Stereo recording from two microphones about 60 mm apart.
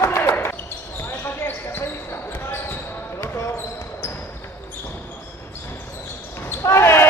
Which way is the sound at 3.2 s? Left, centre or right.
Left.